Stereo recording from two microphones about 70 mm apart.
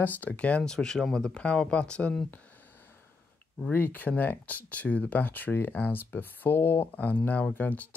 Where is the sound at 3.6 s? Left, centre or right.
Left.